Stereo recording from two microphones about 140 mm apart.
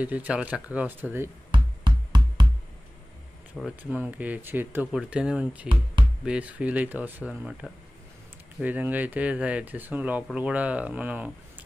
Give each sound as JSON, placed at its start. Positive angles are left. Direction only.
{"t": 0.0, "sound": "speech", "side_deg": -10}
{"t": 1.5, "sound": "music", "side_deg": -30}
{"t": 3.6, "sound": "speech", "side_deg": 0}
{"t": 3.9, "sound": "speech", "side_deg": -10}
{"t": 8.5, "sound": "speech", "side_deg": -10}